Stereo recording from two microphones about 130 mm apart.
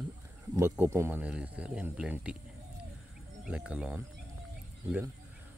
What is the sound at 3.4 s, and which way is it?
Speech, 10° right (ahead or behind).